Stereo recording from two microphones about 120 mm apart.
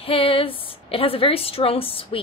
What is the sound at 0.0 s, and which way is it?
A woman's voice, 50° left (ahead or behind).